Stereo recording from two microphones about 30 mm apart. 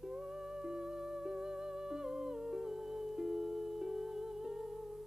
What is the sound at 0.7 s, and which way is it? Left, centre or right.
Music, centre.